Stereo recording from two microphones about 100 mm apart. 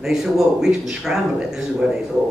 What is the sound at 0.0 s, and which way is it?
Speech, 5° right (ahead or behind).